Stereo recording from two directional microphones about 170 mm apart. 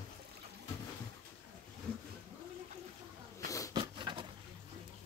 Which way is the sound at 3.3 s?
20° left (ahead or behind).